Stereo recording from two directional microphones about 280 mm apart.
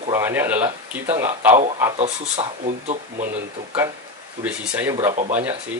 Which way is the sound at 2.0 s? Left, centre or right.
Right.